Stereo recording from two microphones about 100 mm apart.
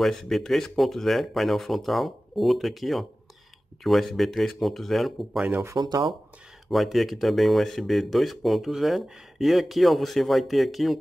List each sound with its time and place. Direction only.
0.0 s speech: centre (ahead or behind)
5.5 s speech: 25° right (ahead or behind)
5.8 s speech: 40° right (ahead or behind)
6.7 s speech: centre (ahead or behind)